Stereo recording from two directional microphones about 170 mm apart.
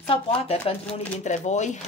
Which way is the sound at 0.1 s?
35° left (ahead or behind).